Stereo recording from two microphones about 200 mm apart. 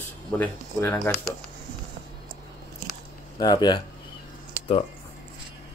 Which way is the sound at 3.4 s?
20° left (ahead or behind).